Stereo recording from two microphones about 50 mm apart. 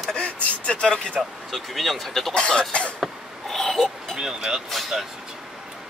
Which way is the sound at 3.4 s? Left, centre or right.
Centre.